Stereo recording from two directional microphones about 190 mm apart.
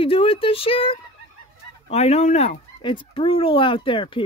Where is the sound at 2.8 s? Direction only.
25° left (ahead or behind).